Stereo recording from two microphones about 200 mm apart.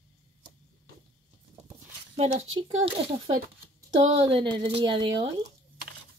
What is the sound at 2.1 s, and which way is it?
Speech, 30° right (ahead or behind).